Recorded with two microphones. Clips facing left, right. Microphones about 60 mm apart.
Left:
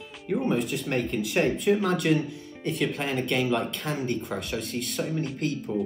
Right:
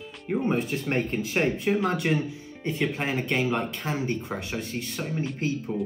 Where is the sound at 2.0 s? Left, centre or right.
Right.